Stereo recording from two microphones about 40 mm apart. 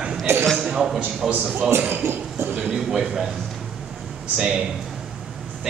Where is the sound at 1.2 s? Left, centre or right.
Centre.